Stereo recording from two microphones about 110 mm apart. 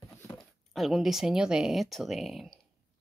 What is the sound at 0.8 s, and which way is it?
Speech, centre (ahead or behind).